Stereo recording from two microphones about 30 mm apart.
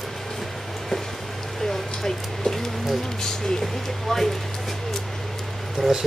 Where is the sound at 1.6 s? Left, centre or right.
Centre.